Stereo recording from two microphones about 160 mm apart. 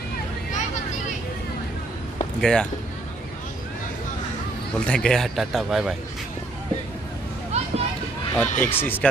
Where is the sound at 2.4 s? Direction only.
5° left (ahead or behind).